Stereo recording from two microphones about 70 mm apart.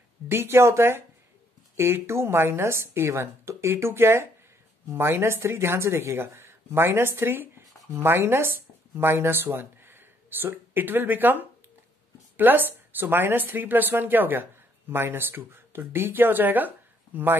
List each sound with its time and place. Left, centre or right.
0.3 s speech: right